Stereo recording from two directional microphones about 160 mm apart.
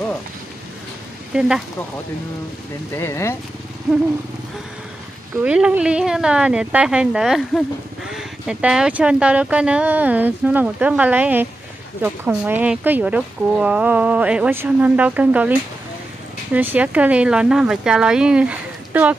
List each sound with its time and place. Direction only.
1.3 s speech: 5° right (ahead or behind)
2.9 s speech: 15° left (ahead or behind)
5.4 s speech: 5° right (ahead or behind)
16.5 s speech: 10° right (ahead or behind)